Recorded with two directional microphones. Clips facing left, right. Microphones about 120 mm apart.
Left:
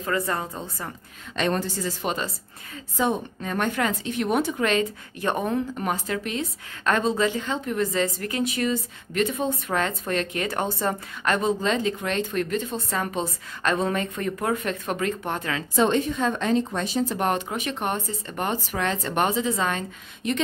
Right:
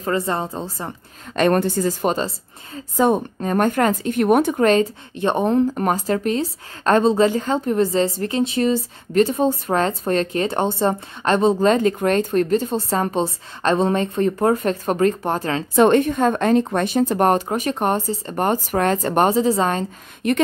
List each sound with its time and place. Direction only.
0.0 s a woman's voice: 25° right (ahead or behind)
1.3 s a woman's voice: 55° right (ahead or behind)
5.1 s a woman's voice: 25° right (ahead or behind)
5.8 s a woman's voice: 40° right (ahead or behind)
11.6 s a woman's voice: 50° right (ahead or behind); by 15.6 s 35° right (ahead or behind)
15.7 s a woman's voice: 60° right (ahead or behind); by 19.9 s 35° right (ahead or behind)
20.2 s a woman's voice: 55° right (ahead or behind)